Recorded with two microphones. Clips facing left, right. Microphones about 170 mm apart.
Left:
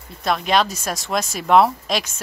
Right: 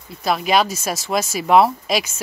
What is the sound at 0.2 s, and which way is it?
Speech, 5° right (ahead or behind).